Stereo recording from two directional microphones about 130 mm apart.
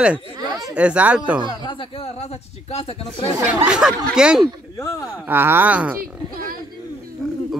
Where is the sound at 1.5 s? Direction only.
40° left (ahead or behind).